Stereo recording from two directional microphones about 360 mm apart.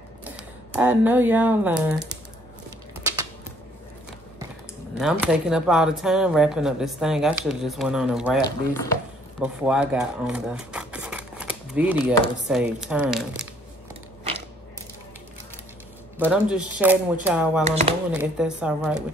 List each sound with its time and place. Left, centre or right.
0.7 s speech: centre
4.9 s speech: centre
16.2 s speech: centre
17.6 s speech: centre
18.1 s speech: centre